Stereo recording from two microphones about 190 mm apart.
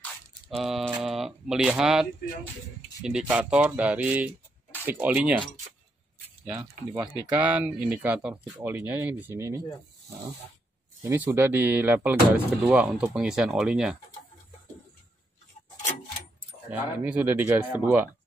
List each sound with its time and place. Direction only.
0.0 s a sound: centre (ahead or behind)
1.0 s speech: centre (ahead or behind)
6.4 s speech: 20° right (ahead or behind)
7.2 s speech: 5° right (ahead or behind)
11.1 s speech: 10° right (ahead or behind)
16.7 s speech: 10° right (ahead or behind)